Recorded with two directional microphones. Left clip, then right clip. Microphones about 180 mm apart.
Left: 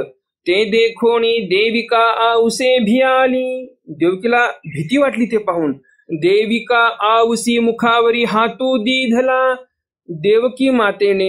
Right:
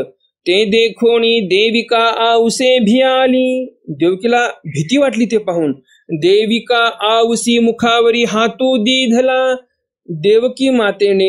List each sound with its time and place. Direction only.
0.0 s a sound: 35° right (ahead or behind)
0.9 s a man's voice: 35° right (ahead or behind)
1.6 s speech: centre (ahead or behind)
1.9 s a man's voice: 40° right (ahead or behind)
9.1 s a man's voice: 40° right (ahead or behind)